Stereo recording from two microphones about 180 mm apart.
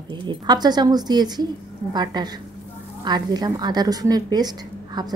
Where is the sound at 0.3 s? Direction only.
25° right (ahead or behind).